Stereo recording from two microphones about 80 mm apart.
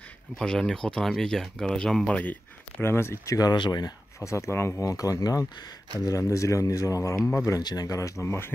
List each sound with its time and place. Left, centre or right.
0.4 s speech: centre
2.8 s speech: left
3.5 s speech: left
3.8 s speech: left
4.8 s speech: left
7.6 s speech: left